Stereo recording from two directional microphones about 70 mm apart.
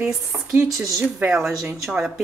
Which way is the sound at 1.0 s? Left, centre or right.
Right.